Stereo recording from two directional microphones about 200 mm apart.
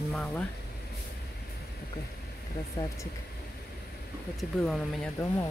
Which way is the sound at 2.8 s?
15° left (ahead or behind).